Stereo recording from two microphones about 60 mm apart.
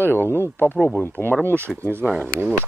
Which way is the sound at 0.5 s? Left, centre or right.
Left.